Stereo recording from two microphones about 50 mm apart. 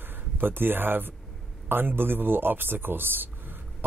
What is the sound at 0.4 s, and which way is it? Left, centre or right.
Speech, right.